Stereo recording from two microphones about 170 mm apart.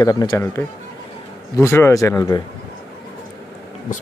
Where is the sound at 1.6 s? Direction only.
15° left (ahead or behind).